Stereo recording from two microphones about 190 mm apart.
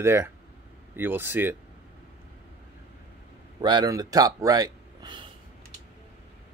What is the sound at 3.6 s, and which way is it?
Speech, 20° right (ahead or behind).